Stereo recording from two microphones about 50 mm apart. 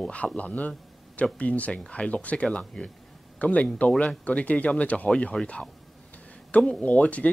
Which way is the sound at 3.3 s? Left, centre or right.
Left.